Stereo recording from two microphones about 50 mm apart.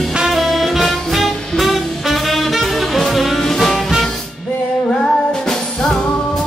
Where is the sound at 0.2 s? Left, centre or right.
Centre.